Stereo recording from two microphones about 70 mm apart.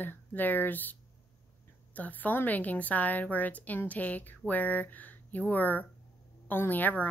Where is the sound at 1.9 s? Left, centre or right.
Left.